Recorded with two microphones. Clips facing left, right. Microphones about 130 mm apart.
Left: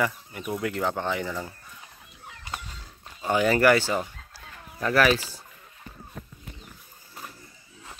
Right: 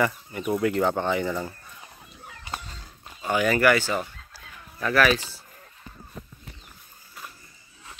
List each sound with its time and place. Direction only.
0.0 s speech: centre (ahead or behind)
3.3 s speech: 30° left (ahead or behind)
3.8 s speech: 15° left (ahead or behind)
4.7 s speech: 30° left (ahead or behind)